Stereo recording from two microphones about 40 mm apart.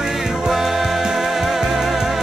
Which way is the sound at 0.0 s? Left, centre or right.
Centre.